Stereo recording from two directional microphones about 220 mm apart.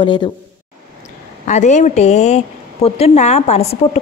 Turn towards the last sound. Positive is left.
turn(degrees=30)  # may be behind; listen again after turning